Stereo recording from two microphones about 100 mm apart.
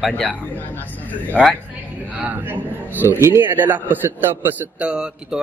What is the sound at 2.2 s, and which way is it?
A man's voice, 15° right (ahead or behind).